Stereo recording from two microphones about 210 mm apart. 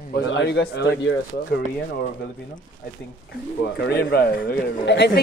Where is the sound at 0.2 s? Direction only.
60° left (ahead or behind).